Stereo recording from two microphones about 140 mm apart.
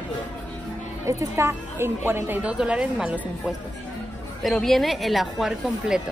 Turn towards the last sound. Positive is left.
turn(degrees=-5)  # may be behind; listen again after turning